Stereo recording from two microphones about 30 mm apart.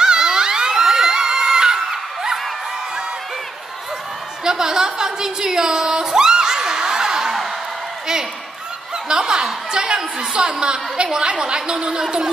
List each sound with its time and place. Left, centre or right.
0.0 s crowd: right
4.5 s a sound: right
9.1 s a woman's voice: right